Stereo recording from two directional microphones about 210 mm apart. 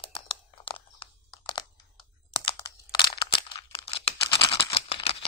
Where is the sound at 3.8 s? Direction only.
25° left (ahead or behind).